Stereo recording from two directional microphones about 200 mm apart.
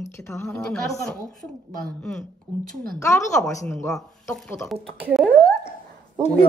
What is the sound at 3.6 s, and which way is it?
Speech, 10° left (ahead or behind).